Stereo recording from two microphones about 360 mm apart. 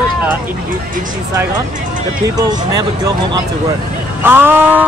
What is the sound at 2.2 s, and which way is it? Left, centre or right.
Speech, centre.